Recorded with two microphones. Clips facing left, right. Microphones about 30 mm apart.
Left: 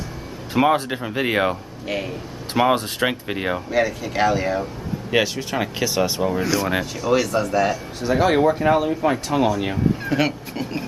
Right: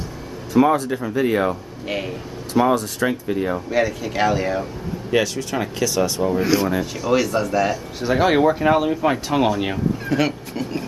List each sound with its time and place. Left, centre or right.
0.5 s speech: left
1.9 s speech: centre
2.5 s speech: left
3.7 s speech: centre
5.1 s speech: centre
6.4 s speech: centre
8.0 s speech: centre
10.0 s speech: centre